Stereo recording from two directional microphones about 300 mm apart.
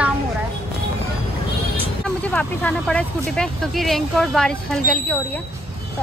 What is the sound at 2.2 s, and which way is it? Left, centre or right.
Speech, centre.